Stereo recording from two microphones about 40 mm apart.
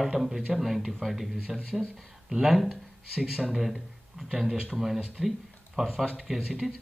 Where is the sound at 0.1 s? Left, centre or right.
Centre.